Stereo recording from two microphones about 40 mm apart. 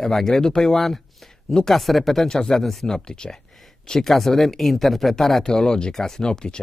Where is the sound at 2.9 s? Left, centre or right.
Centre.